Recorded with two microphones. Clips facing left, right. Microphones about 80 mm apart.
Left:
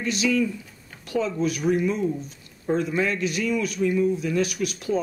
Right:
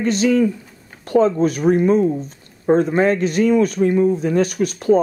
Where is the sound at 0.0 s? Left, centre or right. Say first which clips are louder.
Right 7 dB; right.